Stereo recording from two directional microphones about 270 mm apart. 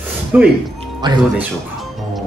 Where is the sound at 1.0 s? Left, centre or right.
Centre.